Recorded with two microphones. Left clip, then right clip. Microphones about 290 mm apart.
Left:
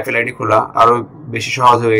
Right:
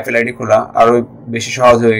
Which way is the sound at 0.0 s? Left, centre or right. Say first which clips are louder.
Right 1 dB; right.